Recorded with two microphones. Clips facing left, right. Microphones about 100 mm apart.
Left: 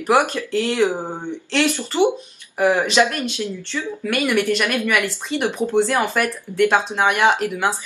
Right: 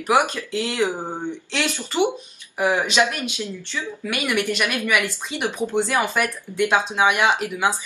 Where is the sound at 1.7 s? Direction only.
20° left (ahead or behind).